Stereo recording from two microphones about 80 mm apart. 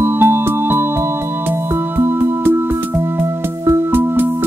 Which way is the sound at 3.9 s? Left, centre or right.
Right.